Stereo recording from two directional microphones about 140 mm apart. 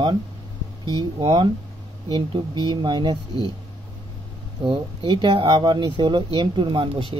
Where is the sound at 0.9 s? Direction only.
35° right (ahead or behind).